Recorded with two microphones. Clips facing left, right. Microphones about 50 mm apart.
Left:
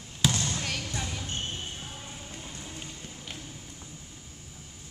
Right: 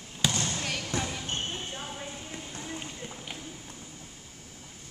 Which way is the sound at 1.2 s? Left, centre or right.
Right.